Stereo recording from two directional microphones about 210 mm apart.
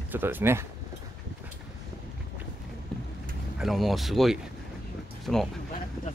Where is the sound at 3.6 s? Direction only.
Centre (ahead or behind).